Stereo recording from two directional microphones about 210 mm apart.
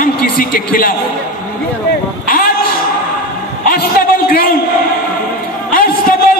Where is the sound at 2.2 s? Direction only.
40° left (ahead or behind).